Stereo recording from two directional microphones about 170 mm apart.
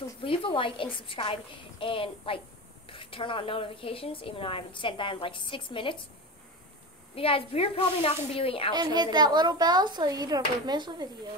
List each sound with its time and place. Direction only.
0.2 s speech: 30° left (ahead or behind)
7.2 s speech: 35° left (ahead or behind)
8.7 s speech: 25° right (ahead or behind)